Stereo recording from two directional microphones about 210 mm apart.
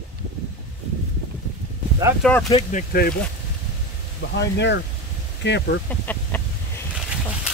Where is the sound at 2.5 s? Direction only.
40° left (ahead or behind).